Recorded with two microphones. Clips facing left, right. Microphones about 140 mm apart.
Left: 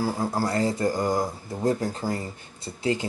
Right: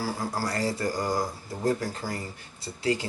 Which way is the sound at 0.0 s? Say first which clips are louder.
Left 4 dB; 20° left (ahead or behind).